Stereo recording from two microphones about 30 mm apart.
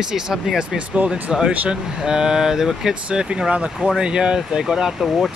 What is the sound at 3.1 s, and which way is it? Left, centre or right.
Speech, right.